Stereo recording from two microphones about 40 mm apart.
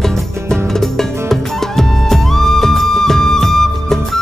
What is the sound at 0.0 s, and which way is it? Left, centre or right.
Music, centre.